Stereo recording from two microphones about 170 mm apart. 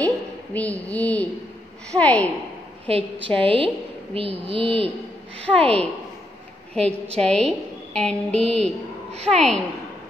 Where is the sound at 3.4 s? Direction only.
30° right (ahead or behind).